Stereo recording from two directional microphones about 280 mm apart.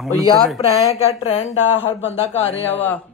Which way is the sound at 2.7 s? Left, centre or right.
Centre.